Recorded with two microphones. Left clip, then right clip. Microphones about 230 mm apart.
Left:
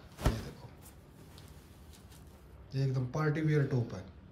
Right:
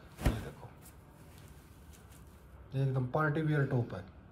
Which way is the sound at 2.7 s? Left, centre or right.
Centre.